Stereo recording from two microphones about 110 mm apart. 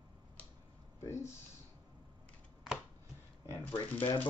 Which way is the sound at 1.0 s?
25° left (ahead or behind).